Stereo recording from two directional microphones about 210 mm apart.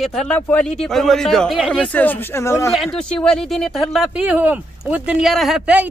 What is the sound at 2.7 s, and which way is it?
Speech, centre (ahead or behind).